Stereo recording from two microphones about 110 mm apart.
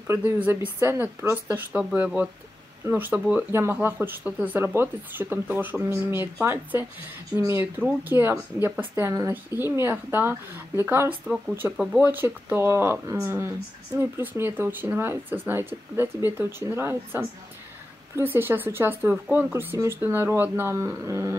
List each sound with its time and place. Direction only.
0.0 s speech: 20° right (ahead or behind)
12.1 s speech: 15° right (ahead or behind)